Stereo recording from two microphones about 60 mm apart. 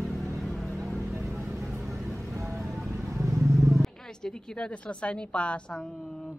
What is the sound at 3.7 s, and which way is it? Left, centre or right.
A woman's voice, centre.